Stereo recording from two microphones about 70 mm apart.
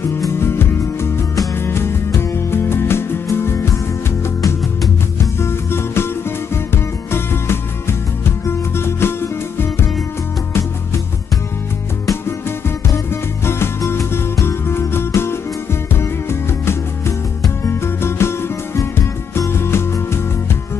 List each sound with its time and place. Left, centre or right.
0.4 s music: left
5.4 s music: left
12.1 s music: left